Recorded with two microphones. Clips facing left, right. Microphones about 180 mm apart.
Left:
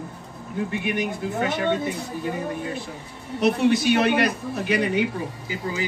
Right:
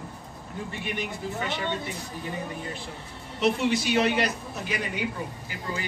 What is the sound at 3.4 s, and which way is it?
A man's voice, 55° left (ahead or behind).